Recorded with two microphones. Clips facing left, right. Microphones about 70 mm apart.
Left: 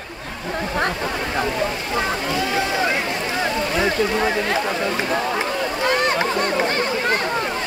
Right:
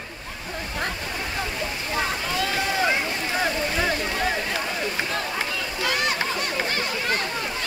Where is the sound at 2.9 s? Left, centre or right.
Left.